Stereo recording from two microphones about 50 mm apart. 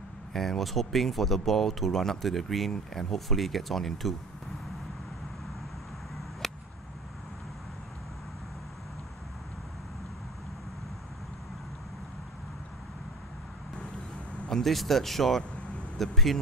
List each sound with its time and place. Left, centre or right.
0.3 s speech: centre
6.4 s a sound: centre
14.5 s speech: centre